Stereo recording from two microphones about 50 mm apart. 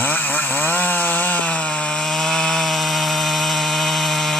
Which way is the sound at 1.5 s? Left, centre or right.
Left.